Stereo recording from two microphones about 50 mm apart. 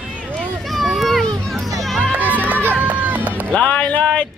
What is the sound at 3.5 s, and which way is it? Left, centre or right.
Speech, left.